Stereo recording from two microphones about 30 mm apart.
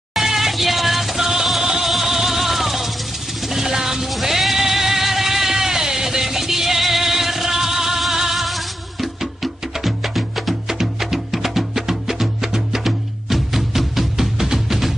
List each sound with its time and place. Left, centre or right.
0.1 s music: centre
3.4 s a sound: centre
4.0 s music: centre
10.7 s music: centre